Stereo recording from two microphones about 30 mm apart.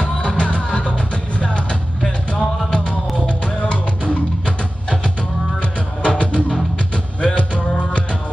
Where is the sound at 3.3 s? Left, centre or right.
Left.